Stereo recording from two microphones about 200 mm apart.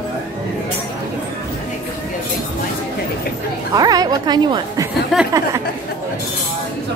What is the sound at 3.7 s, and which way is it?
A woman's voice, 20° right (ahead or behind).